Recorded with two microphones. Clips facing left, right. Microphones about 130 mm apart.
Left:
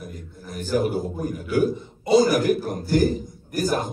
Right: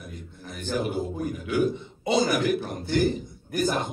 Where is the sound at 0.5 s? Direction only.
45° left (ahead or behind).